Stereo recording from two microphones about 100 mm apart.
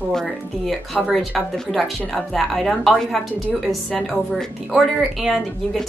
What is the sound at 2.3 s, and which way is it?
Speech, centre (ahead or behind).